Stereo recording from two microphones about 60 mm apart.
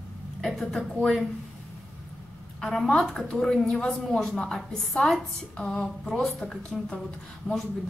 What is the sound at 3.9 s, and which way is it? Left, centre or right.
A woman's voice, centre.